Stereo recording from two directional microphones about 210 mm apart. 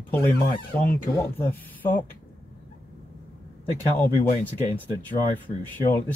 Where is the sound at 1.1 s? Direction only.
10° left (ahead or behind).